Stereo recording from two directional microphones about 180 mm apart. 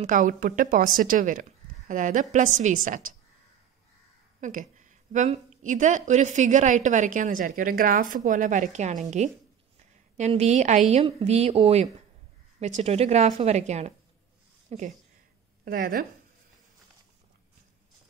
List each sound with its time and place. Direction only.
0.0 s a woman's voice: 45° right (ahead or behind)
4.4 s a sound: 45° right (ahead or behind)
5.6 s a woman's voice: 45° right (ahead or behind)
10.1 s a woman's voice: 40° right (ahead or behind)
15.6 s a woman's voice: 55° right (ahead or behind)